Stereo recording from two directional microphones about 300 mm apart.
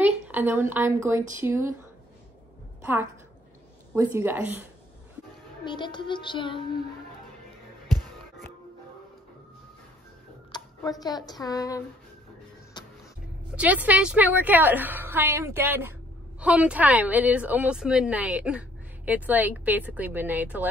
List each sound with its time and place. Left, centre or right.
0.0 s a woman's voice: centre
2.8 s a woman's voice: centre
5.7 s music: centre
10.5 s speech: centre
12.8 s music: centre
13.6 s a woman's voice: centre